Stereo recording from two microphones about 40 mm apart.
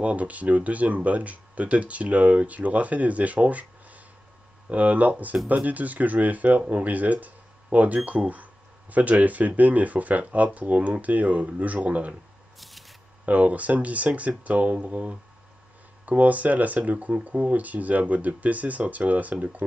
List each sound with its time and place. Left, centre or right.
0.0 s speech: right
12.5 s spray: centre
13.2 s speech: right